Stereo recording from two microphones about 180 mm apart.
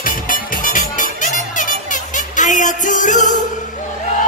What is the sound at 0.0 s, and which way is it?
Music, 50° left (ahead or behind).